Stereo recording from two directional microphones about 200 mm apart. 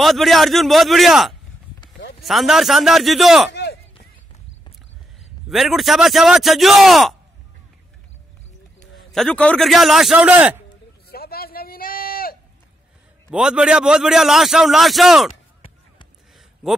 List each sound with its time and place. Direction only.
0.0 s a man's voice: centre (ahead or behind)
5.5 s a man's voice: centre (ahead or behind)
8.9 s a man's voice: centre (ahead or behind)
11.1 s a sound: 50° left (ahead or behind)
13.3 s a man's voice: 5° right (ahead or behind)